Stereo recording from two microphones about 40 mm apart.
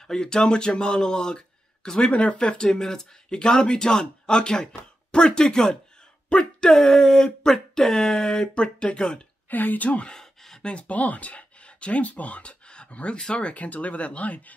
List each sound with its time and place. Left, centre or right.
0.0 s speech: centre
2.1 s speech: left; by 5.8 s centre
6.2 s speech: left
6.7 s speech: centre
9.5 s speech: left
10.1 s a sound: centre
10.6 s speech: left